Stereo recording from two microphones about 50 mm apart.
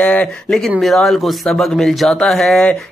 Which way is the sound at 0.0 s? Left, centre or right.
Left.